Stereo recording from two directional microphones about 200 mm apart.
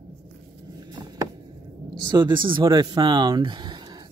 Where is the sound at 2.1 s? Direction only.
25° right (ahead or behind).